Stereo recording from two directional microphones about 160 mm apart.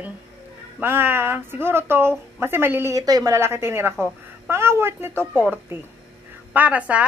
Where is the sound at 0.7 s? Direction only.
15° right (ahead or behind).